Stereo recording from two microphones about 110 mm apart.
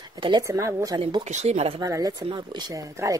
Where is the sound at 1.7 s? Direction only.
35° right (ahead or behind).